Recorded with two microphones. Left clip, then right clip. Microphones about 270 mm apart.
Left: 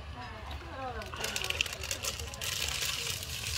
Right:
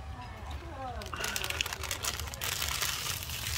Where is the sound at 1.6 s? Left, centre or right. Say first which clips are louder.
Even; centre.